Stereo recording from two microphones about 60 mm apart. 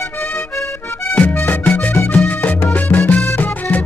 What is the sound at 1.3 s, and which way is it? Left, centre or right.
Music, left.